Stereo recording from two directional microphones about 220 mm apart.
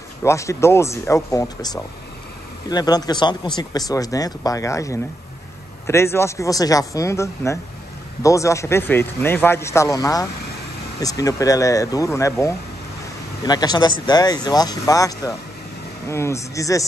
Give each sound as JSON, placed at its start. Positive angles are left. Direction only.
{"t": 0.2, "sound": "speech", "side_deg": 15}
{"t": 2.7, "sound": "speech", "side_deg": 15}